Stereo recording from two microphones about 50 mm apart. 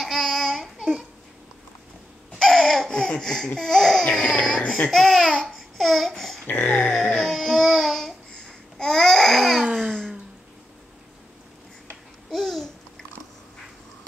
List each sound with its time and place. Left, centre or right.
0.0 s babbling: centre
0.7 s babbling: centre
2.3 s laughter: centre
4.2 s speech: centre
4.9 s laughter: centre
6.4 s a sound: left
6.9 s music: centre
7.2 s a sound: centre
8.5 s babbling: centre
12.3 s babbling: centre